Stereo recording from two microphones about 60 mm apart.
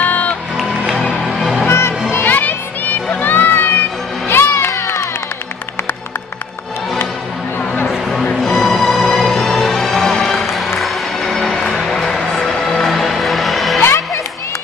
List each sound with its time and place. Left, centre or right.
0.0 s music: left
0.6 s music: centre
1.7 s music: left
2.1 s music: left
4.6 s crowd: left
8.1 s music: centre
13.7 s music: left